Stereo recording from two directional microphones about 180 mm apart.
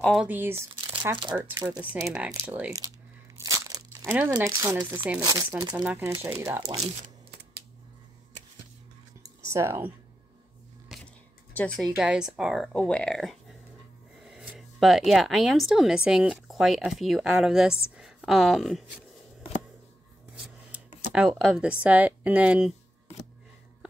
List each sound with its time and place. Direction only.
0.0 s speech: centre (ahead or behind)
0.3 s speech: 10° right (ahead or behind)
3.3 s speech: 20° right (ahead or behind)
9.5 s speech: 15° right (ahead or behind)
10.9 s a sound: centre (ahead or behind)
11.5 s speech: 5° left (ahead or behind)
20.3 s filing: 5° right (ahead or behind)
21.1 s speech: 5° right (ahead or behind)